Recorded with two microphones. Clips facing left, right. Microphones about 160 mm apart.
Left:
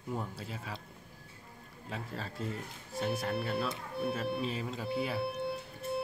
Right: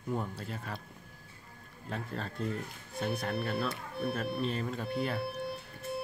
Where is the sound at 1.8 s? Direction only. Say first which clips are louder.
Right 2 dB; 5° left (ahead or behind).